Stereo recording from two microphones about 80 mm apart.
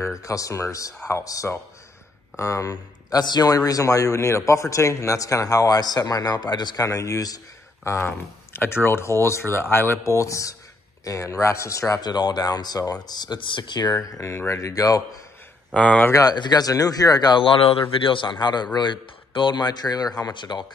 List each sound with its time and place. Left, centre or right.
0.1 s speech: left
6.8 s speech: left
7.8 s speech: left
12.0 s speech: left
14.0 s speech: left
15.7 s speech: centre
16.1 s speech: left
16.3 s speech: left